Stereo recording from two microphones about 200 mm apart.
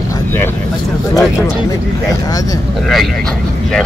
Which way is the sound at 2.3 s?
15° left (ahead or behind).